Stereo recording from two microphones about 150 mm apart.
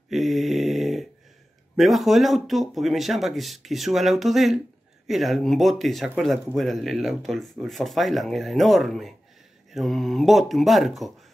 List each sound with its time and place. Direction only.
0.1 s mantra: centre (ahead or behind)
1.8 s speech: centre (ahead or behind)